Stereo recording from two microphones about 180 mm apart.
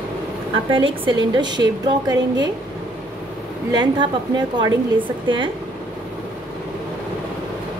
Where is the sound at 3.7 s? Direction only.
25° right (ahead or behind).